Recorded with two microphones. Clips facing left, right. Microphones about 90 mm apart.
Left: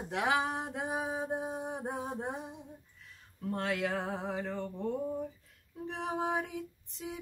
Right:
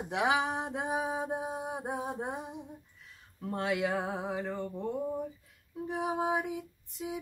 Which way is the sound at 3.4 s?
15° right (ahead or behind).